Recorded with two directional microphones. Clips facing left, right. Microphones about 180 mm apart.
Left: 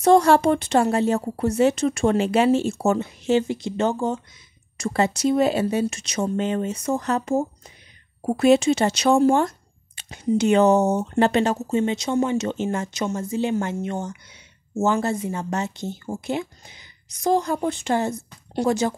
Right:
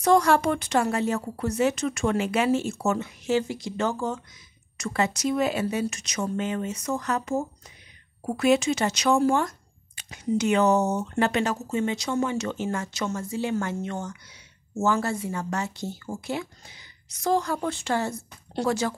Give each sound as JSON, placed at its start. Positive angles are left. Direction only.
{"t": 0.0, "sound": "speech", "side_deg": 30}